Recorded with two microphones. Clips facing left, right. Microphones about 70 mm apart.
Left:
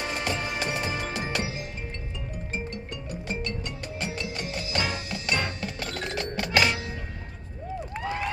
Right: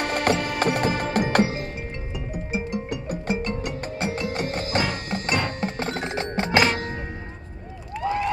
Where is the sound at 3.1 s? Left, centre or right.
Right.